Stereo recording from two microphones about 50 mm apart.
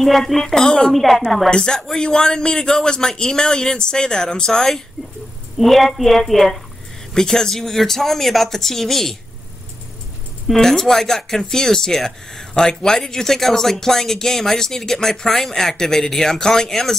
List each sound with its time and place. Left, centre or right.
0.0 s a woman's voice: centre
0.7 s speech: centre
0.9 s a woman's voice: centre
1.5 s a woman's voice: centre
10.5 s speech: centre